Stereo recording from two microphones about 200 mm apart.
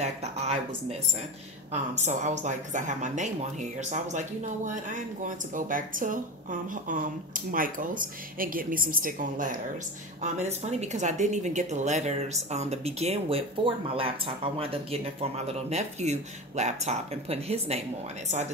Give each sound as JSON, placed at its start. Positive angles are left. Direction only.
{"t": 0.0, "sound": "a woman's voice", "side_deg": -35}
{"t": 1.7, "sound": "a woman's voice", "side_deg": -35}